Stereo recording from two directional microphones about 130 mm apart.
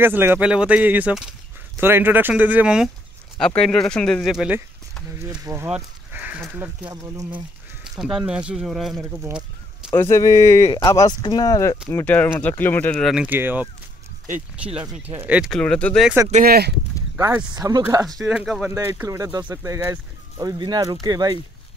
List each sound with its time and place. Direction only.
0.0 s speech: 15° right (ahead or behind)
3.3 s speech: 5° left (ahead or behind)
5.4 s speech: 20° right (ahead or behind)
6.1 s goat: 10° right (ahead or behind)
6.5 s speech: 15° right (ahead or behind)
8.0 s speech: 5° right (ahead or behind)
9.9 s speech: 20° left (ahead or behind)
11.9 s speech: 15° left (ahead or behind)
13.0 s speech: 5° right (ahead or behind)
15.1 s speech: 10° right (ahead or behind)
15.5 s speech: 10° left (ahead or behind)
17.6 s speech: 30° right (ahead or behind)
18.0 s speech: centre (ahead or behind)
18.8 s speech: 20° right (ahead or behind)